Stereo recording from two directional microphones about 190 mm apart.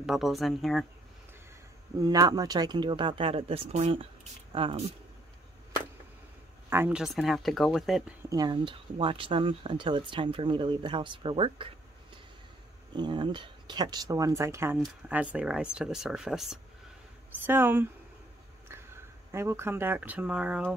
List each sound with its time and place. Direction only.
0.0 s speech: centre (ahead or behind)
2.0 s speech: 20° right (ahead or behind)
6.7 s speech: 10° right (ahead or behind)
8.3 s speech: 20° right (ahead or behind)
12.9 s speech: 25° right (ahead or behind)
19.3 s speech: 15° right (ahead or behind)